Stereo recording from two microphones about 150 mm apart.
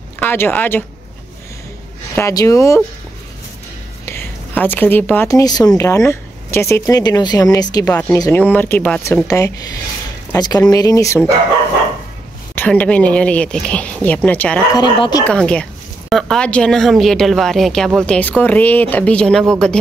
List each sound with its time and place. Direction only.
0.2 s speech: 10° left (ahead or behind)
2.1 s speech: 20° left (ahead or behind)
4.0 s speech: 15° left (ahead or behind)
9.0 s speech: 20° left (ahead or behind)
12.5 s speech: 10° left (ahead or behind)
14.8 s speech: 30° left (ahead or behind)
15.2 s speech: 5° left (ahead or behind)